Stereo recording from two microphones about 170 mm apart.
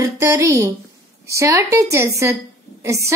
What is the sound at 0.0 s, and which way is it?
A woman's voice, 20° right (ahead or behind).